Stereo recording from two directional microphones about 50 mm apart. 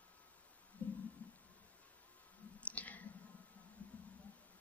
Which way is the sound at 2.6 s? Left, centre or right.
Left.